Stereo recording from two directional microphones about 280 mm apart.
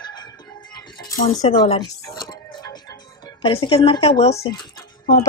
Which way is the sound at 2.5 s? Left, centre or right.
Centre.